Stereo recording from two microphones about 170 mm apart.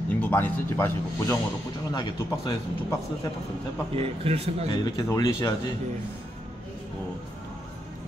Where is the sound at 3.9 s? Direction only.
35° right (ahead or behind).